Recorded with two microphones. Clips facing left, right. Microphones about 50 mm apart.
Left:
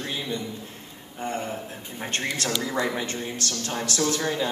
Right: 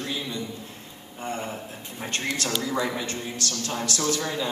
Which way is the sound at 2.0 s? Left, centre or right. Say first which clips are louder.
Even; left.